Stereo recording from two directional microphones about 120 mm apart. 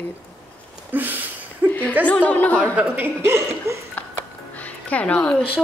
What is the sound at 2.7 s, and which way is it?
A woman's voice, 15° right (ahead or behind).